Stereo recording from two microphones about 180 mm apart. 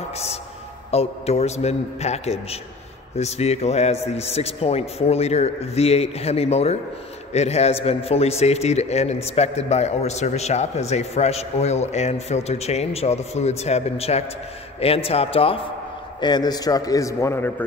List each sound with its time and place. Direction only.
0.9 s a man's voice: 35° left (ahead or behind); by 17.6 s 15° left (ahead or behind)